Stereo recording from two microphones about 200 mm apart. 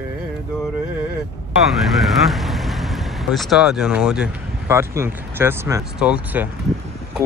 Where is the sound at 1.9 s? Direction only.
Centre (ahead or behind).